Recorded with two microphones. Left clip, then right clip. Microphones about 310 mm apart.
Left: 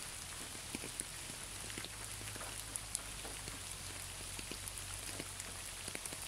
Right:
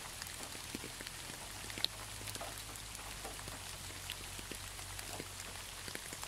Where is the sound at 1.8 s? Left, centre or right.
Right.